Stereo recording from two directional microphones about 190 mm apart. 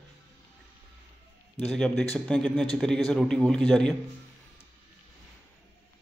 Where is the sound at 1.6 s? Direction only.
5° left (ahead or behind).